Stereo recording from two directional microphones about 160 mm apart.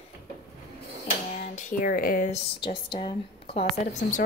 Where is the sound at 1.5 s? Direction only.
55° left (ahead or behind).